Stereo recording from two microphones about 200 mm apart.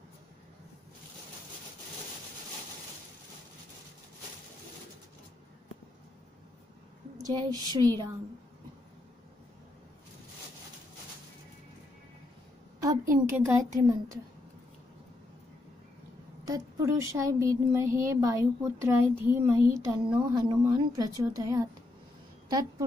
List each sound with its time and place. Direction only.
7.2 s speech: 20° right (ahead or behind)
13.2 s speech: 15° right (ahead or behind)
16.4 s a woman's voice: 15° right (ahead or behind)